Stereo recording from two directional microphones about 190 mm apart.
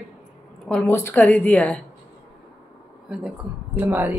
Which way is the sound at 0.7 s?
10° left (ahead or behind).